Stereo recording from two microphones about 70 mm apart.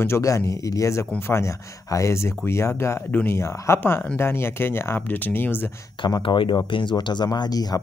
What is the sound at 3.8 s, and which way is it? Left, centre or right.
Speech, left.